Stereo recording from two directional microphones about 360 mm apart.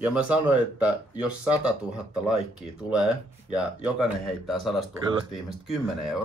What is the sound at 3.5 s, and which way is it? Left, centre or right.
Speech, centre.